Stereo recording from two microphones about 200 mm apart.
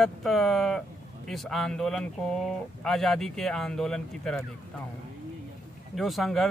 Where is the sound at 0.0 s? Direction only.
Centre (ahead or behind).